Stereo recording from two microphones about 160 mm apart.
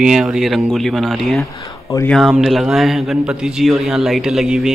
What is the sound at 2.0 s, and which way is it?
Speech, centre (ahead or behind).